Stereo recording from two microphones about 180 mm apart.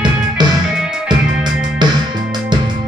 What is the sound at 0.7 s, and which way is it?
Music, 5° right (ahead or behind).